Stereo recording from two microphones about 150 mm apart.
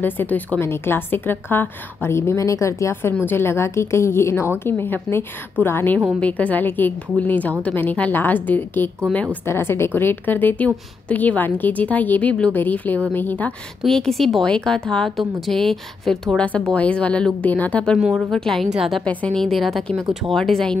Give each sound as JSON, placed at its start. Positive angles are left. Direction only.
{"t": 0.0, "sound": "a woman's voice", "side_deg": 10}
{"t": 17.9, "sound": "a woman's voice", "side_deg": 0}